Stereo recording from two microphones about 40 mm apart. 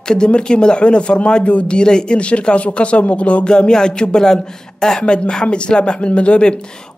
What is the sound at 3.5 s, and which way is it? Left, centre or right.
Speech, centre.